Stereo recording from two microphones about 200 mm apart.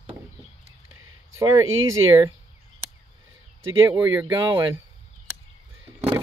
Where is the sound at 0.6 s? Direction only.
90° right.